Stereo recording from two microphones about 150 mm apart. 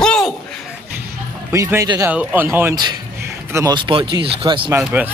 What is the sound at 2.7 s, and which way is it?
Speech, 30° right (ahead or behind).